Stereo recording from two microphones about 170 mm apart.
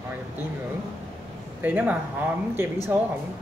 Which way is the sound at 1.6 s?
10° right (ahead or behind).